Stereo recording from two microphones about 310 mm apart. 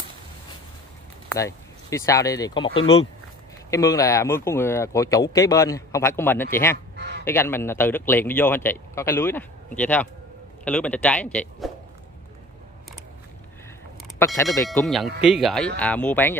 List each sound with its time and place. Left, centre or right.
1.3 s speech: centre
7.0 s honk: right
7.2 s speech: centre
14.1 s speech: centre